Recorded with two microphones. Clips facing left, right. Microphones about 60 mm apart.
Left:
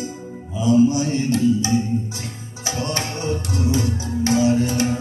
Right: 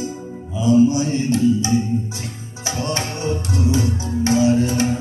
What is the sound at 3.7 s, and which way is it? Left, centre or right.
Music, right.